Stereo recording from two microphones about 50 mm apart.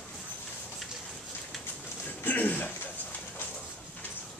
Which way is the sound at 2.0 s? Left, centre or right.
Left.